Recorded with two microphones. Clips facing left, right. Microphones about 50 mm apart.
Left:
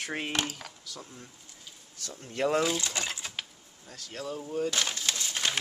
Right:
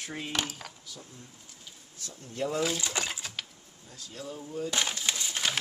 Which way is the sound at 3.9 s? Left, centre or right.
Left.